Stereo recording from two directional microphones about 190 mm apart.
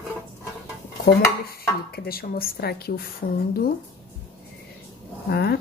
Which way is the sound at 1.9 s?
55° left (ahead or behind).